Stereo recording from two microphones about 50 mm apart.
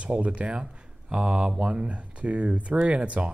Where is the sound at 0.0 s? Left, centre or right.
Right.